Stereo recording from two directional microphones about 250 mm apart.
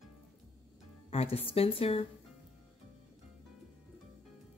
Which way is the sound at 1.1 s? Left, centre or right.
Left.